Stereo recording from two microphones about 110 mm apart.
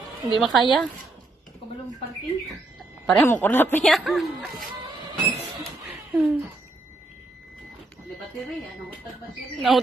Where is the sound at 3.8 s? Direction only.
Centre (ahead or behind).